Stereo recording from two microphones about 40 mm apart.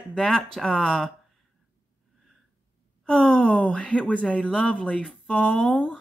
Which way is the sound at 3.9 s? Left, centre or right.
Left.